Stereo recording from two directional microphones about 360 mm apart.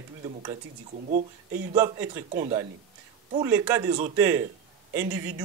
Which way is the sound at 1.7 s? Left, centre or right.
Centre.